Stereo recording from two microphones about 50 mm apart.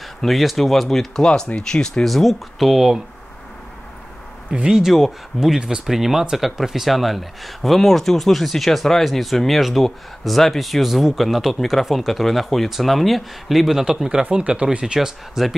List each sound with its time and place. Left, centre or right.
0.2 s speech: centre
2.0 s speech: centre
4.5 s speech: centre
4.8 s speech: centre
15.0 s speech: centre